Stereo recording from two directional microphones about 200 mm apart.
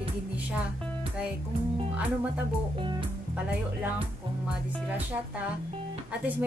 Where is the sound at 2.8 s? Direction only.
25° right (ahead or behind).